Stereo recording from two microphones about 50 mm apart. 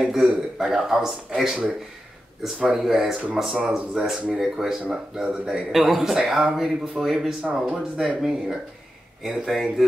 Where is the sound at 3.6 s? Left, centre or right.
Centre.